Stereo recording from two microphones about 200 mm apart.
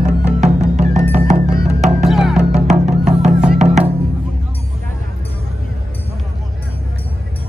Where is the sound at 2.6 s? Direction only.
35° right (ahead or behind).